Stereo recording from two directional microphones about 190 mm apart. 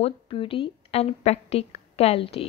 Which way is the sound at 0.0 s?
25° left (ahead or behind).